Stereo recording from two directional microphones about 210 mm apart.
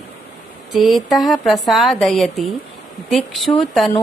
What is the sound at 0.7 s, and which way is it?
A woman's voice, centre (ahead or behind).